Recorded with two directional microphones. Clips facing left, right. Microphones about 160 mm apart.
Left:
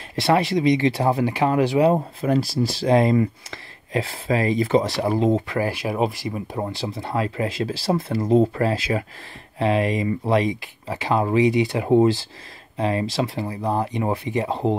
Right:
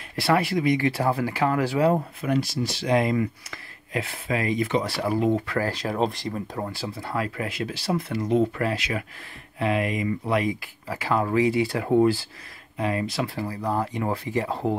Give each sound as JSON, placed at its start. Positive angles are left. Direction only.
{"t": 0.1, "sound": "speech", "side_deg": 20}
{"t": 2.2, "sound": "speech", "side_deg": 35}
{"t": 4.8, "sound": "speech", "side_deg": 20}
{"t": 6.6, "sound": "speech", "side_deg": 20}